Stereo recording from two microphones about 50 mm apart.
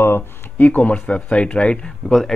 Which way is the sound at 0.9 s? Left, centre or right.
Left.